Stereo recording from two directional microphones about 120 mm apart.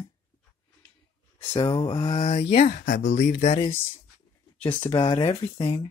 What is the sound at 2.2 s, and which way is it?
Speech, 65° left (ahead or behind).